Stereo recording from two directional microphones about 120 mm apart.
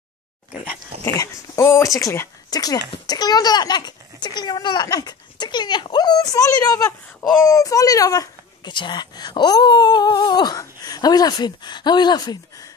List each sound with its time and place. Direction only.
1.0 s speech: 30° left (ahead or behind)